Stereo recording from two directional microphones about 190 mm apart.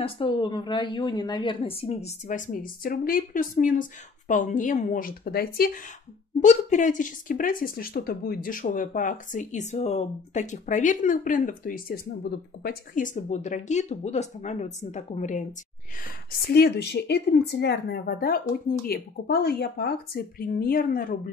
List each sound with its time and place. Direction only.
0.0 s speech: 25° left (ahead or behind); by 5.7 s 55° left (ahead or behind)
6.4 s speech: 40° left (ahead or behind)
16.0 s a woman's voice: 55° left (ahead or behind)